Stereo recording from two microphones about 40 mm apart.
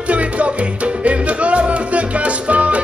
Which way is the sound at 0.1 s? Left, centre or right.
Right.